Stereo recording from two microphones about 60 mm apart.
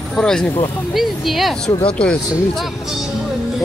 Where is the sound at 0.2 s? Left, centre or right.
Centre.